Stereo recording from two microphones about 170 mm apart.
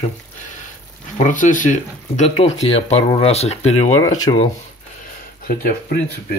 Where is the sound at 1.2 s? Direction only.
50° left (ahead or behind).